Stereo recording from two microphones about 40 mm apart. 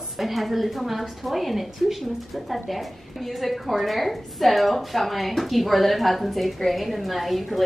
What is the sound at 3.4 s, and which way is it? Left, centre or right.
A woman's voice, centre.